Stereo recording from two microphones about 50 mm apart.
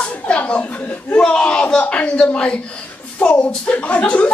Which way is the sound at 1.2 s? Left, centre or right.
Centre.